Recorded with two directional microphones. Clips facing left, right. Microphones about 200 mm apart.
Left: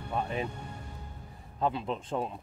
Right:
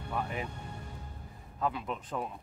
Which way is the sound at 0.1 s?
25° left (ahead or behind).